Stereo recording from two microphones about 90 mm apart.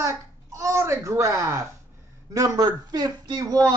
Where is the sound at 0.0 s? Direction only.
35° right (ahead or behind).